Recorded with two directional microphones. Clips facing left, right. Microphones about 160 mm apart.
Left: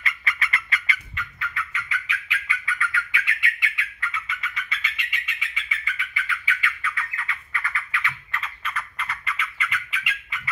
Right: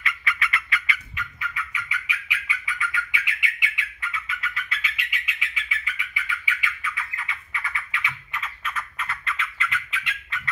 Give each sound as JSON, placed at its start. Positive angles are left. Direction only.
{"t": 0.0, "sound": "bird", "side_deg": 40}
{"t": 1.1, "sound": "bird", "side_deg": -15}
{"t": 4.4, "sound": "bird", "side_deg": -5}
{"t": 8.6, "sound": "squawk", "side_deg": -5}